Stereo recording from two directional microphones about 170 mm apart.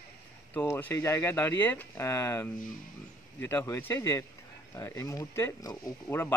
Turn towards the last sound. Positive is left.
turn(degrees=15)  # may be behind; listen again after turning